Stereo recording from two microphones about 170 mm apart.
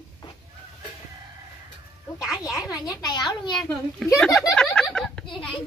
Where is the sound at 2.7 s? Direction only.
20° left (ahead or behind).